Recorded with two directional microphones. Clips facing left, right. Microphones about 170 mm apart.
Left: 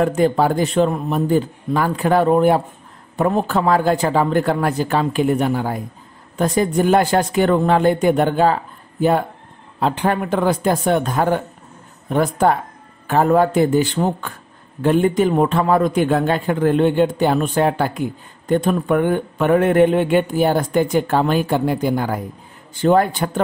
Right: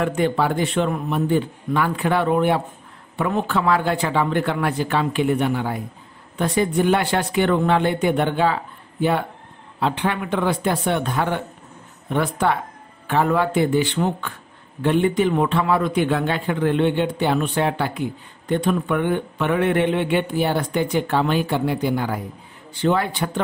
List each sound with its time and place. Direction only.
0.0 s a man's voice: 40° left (ahead or behind)
9.8 s a man's voice: 40° left (ahead or behind)